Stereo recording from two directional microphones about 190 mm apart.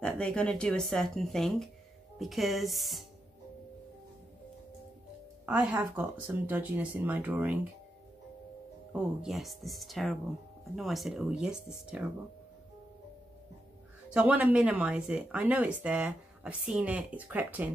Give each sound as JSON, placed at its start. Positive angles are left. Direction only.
{"t": 0.0, "sound": "speech", "side_deg": 5}
{"t": 5.4, "sound": "speech", "side_deg": -5}
{"t": 8.9, "sound": "speech", "side_deg": 0}
{"t": 14.1, "sound": "speech", "side_deg": -5}